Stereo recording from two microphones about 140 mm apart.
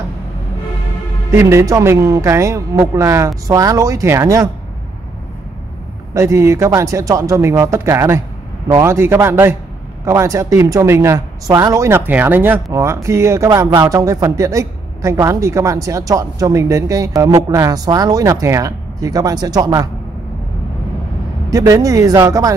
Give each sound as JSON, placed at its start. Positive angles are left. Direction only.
{"t": 1.3, "sound": "speech", "side_deg": -20}
{"t": 6.1, "sound": "a man's voice", "side_deg": -20}
{"t": 21.5, "sound": "speech", "side_deg": -25}